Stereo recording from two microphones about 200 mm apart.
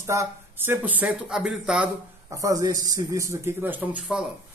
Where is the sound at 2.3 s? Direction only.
15° right (ahead or behind).